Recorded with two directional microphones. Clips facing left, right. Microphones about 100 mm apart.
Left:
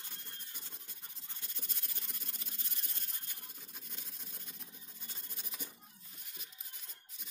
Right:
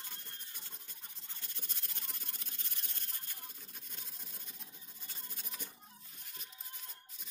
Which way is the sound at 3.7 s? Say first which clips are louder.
Left 1 dB; 15° left (ahead or behind).